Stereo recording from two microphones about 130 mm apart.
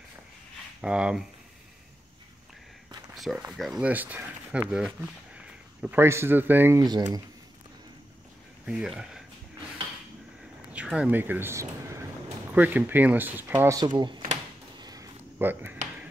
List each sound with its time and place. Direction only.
0.7 s speech: 5° right (ahead or behind)
3.2 s speech: centre (ahead or behind)
3.9 s speech: 15° right (ahead or behind)
6.8 s speech: 35° right (ahead or behind)
8.6 s speech: 5° right (ahead or behind)
10.7 s speech: 10° right (ahead or behind)
13.7 s speech: 35° right (ahead or behind)
14.8 s a sound: 30° right (ahead or behind)
15.3 s speech: 15° right (ahead or behind)